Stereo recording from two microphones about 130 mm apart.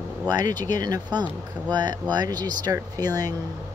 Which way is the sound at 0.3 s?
30° right (ahead or behind).